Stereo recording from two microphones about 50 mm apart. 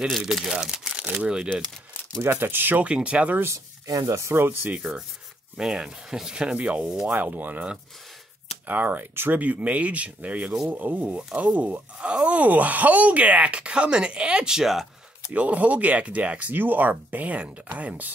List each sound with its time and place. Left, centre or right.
0.2 s speech: centre
2.2 s speech: right
2.8 s speech: right
4.3 s speech: right
5.6 s speech: centre
7.1 s speech: right
8.6 s speech: right
9.4 s speech: right; by 14.9 s centre
15.3 s speech: right